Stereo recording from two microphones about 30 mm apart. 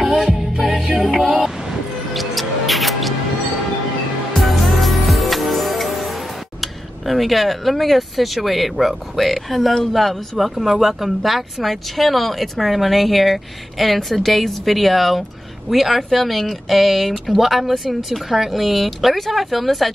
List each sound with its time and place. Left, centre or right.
0.2 s music: centre
2.1 s music: centre
4.4 s music: centre
6.6 s speech: centre